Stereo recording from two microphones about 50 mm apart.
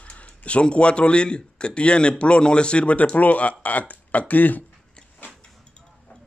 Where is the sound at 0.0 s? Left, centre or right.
Left.